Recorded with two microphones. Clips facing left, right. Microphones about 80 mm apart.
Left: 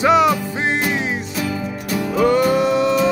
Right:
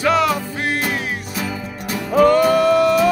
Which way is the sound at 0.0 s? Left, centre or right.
Centre.